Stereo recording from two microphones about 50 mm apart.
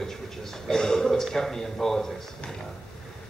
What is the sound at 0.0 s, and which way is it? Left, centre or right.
A man's voice, centre.